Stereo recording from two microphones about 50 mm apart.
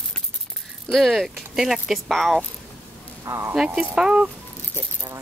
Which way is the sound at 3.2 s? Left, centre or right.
Right.